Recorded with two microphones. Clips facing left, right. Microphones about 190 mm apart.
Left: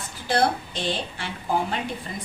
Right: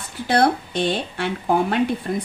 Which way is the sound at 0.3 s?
60° right (ahead or behind).